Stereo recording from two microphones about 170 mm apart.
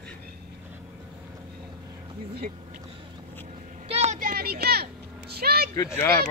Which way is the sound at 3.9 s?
35° right (ahead or behind).